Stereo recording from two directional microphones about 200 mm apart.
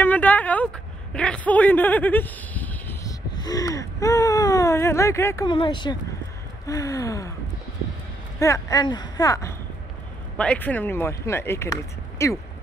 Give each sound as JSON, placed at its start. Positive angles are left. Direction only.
{"t": 0.0, "sound": "a man's voice", "side_deg": 10}
{"t": 8.4, "sound": "speech", "side_deg": 15}